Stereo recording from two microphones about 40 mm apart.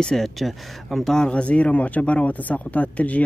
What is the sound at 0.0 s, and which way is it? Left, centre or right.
Speech, centre.